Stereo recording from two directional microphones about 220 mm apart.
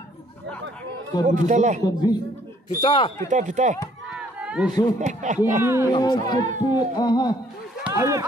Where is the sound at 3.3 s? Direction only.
35° right (ahead or behind).